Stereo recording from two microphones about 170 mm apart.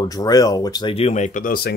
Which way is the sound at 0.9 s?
40° left (ahead or behind).